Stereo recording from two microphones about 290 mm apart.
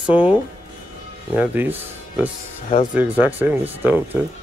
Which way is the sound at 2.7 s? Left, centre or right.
Left.